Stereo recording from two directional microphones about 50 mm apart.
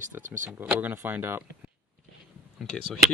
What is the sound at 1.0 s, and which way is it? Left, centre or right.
Speech, right.